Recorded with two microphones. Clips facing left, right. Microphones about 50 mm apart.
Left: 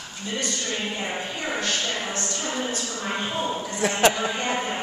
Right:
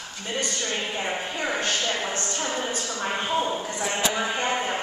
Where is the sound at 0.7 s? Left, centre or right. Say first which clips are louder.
Even; centre.